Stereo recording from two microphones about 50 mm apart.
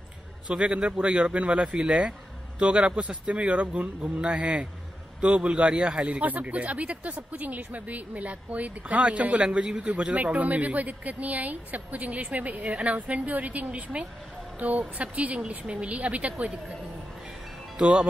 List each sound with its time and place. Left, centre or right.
0.5 s speech: right
17.7 s speech: centre